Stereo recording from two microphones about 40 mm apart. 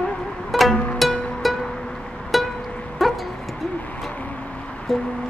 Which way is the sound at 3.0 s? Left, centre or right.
Centre.